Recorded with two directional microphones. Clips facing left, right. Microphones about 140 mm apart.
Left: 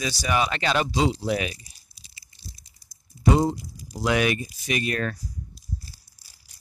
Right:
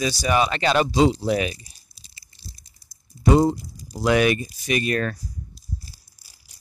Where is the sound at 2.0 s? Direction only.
35° right (ahead or behind).